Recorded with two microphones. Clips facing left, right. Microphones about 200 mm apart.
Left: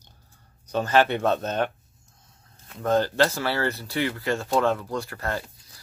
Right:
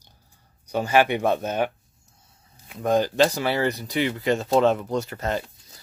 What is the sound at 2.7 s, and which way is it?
Speech, 15° right (ahead or behind).